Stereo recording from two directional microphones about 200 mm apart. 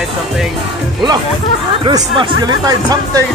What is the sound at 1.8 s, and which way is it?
Speech, 25° right (ahead or behind).